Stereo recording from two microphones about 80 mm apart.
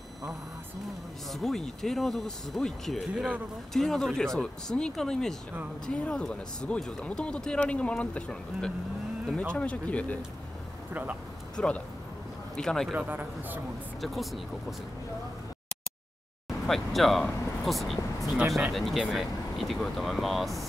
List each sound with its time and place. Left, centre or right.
1.3 s speech: centre
10.9 s speech: centre
11.5 s speech: centre
12.9 s a man's voice: right
14.0 s speech: centre
16.4 s speech: centre